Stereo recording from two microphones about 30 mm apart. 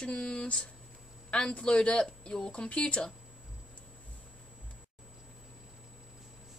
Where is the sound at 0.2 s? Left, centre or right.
Left.